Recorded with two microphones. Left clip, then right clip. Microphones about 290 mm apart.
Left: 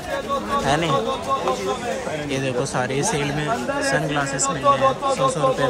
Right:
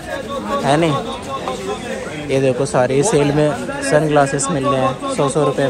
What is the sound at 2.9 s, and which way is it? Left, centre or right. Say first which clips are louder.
Speech: right 8 dB; left.